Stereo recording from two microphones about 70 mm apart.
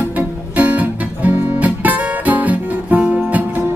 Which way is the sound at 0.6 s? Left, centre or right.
Right.